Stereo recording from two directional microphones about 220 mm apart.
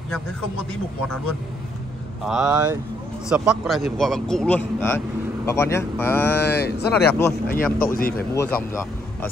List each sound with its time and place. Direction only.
2.2 s a man's voice: 5° right (ahead or behind)
6.4 s speech: 45° left (ahead or behind)